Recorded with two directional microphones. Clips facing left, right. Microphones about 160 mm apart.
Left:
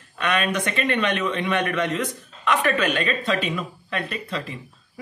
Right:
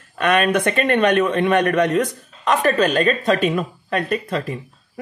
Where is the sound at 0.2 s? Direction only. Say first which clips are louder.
Right 6 dB; 50° right (ahead or behind).